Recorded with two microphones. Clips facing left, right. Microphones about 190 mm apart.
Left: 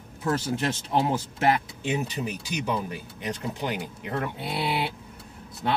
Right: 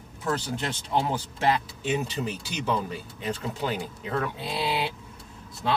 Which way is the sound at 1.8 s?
15° left (ahead or behind).